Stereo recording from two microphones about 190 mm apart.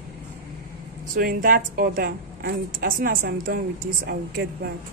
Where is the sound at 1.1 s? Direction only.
50° right (ahead or behind).